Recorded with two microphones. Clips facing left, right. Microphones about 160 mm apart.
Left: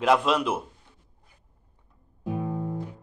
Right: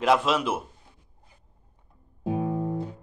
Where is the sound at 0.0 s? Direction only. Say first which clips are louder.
Even; 5° right (ahead or behind).